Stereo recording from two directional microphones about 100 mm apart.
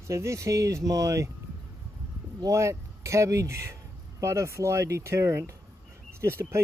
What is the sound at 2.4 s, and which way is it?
Speech, 30° right (ahead or behind).